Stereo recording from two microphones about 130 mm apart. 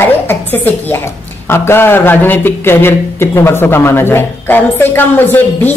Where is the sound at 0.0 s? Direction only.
15° left (ahead or behind).